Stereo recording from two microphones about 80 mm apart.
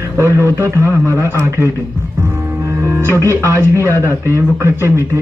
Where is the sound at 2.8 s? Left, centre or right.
Right.